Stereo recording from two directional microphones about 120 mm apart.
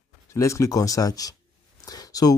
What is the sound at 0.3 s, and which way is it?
Speech, 25° left (ahead or behind).